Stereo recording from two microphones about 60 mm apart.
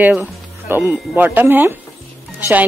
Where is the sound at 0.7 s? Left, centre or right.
Right.